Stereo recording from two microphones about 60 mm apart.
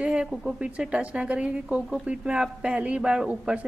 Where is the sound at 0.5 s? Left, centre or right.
Centre.